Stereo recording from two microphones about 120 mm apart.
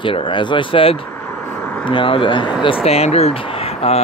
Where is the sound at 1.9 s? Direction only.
45° left (ahead or behind).